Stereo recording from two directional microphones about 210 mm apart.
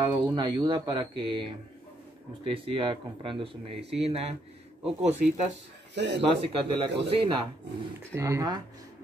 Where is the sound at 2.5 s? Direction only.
25° right (ahead or behind).